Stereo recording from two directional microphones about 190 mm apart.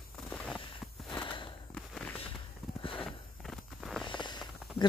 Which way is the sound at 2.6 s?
Centre (ahead or behind).